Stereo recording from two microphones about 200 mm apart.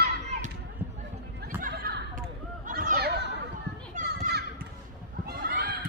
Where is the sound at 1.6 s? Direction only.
45° right (ahead or behind).